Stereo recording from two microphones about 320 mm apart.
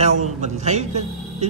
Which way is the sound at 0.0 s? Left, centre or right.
Right.